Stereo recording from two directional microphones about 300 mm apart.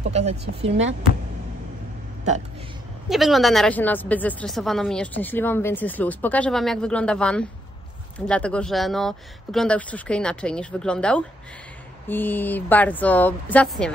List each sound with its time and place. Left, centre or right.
0.1 s speech: right
3.1 s a woman's voice: centre